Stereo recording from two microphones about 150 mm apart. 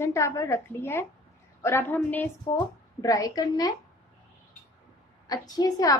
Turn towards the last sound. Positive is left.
turn(degrees=25)  # may be behind; listen again after turning